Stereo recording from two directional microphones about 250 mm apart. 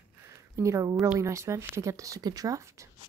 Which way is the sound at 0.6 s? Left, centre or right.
Centre.